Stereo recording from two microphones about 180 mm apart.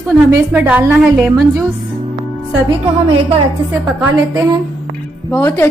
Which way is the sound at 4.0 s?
10° right (ahead or behind).